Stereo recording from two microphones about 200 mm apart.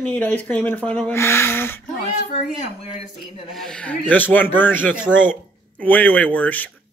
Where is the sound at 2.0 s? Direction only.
35° left (ahead or behind).